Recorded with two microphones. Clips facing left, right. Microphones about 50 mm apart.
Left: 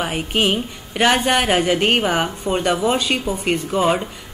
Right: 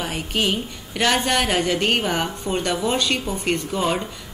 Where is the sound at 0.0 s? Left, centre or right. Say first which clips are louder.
Left 4 dB; left.